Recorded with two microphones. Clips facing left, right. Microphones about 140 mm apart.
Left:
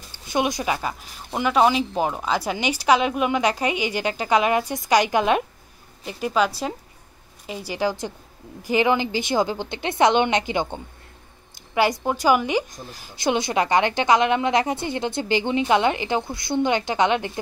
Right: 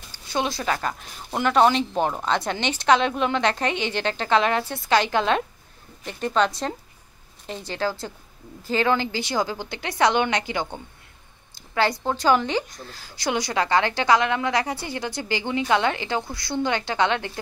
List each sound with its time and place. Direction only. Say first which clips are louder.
0.3 s a woman's voice: left 2 dB; 15° left (ahead or behind)